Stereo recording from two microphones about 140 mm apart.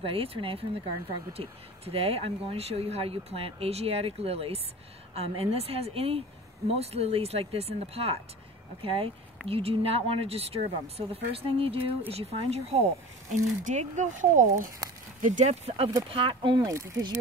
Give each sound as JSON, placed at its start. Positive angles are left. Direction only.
{"t": 0.0, "sound": "speech", "side_deg": -40}
{"t": 13.3, "sound": "speech", "side_deg": -60}
{"t": 16.1, "sound": "speech", "side_deg": -40}
{"t": 16.6, "sound": "speech", "side_deg": -20}